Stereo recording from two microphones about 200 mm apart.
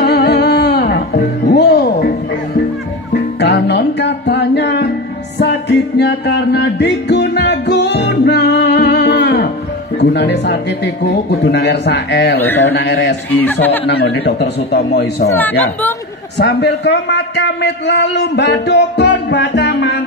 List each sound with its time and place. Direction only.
0.0 s music: 55° left (ahead or behind)
3.3 s music: 60° left (ahead or behind)
9.9 s a man's voice: 60° left (ahead or behind)
12.4 s speech: 10° left (ahead or behind)
12.7 s a man's voice: 60° left (ahead or behind)
13.4 s speech: 10° left (ahead or behind)
13.8 s a man's voice: 55° left (ahead or behind)
15.2 s speech: 10° left (ahead or behind)
16.3 s a man's voice: 60° left (ahead or behind)